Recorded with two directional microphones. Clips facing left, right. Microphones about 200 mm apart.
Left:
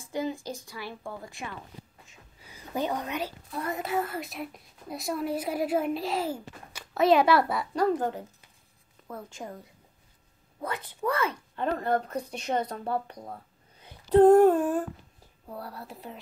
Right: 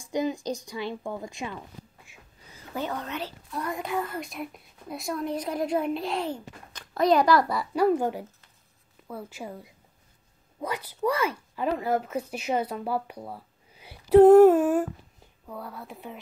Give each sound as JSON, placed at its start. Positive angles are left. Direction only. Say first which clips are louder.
{"t": 0.0, "sound": "speech", "louder": "right 4 dB", "side_deg": -15}
{"t": 2.4, "sound": "a woman's voice", "louder": "left 2 dB", "side_deg": 15}
{"t": 7.7, "sound": "speech", "louder": "right 3 dB", "side_deg": -10}
{"t": 13.7, "sound": "a sound", "louder": "right 4 dB", "side_deg": -10}
{"t": 15.6, "sound": "a woman's voice", "louder": "right 2 dB", "side_deg": 0}